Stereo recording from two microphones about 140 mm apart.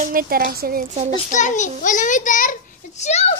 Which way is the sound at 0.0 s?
90° right.